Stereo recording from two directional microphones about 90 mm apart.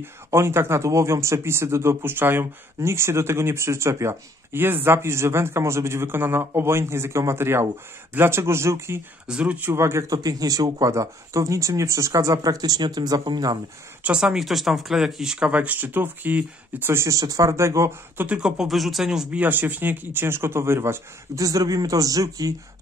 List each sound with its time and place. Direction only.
0.0 s speech: 30° right (ahead or behind)
9.3 s speech: 15° right (ahead or behind)
9.7 s speech: 30° right (ahead or behind)
10.1 s speech: 45° right (ahead or behind)
14.0 s speech: 10° right (ahead or behind); by 18.2 s 30° right (ahead or behind)
18.2 s speech: 10° right (ahead or behind)
19.4 s speech: 20° right (ahead or behind); by 22.5 s 40° right (ahead or behind)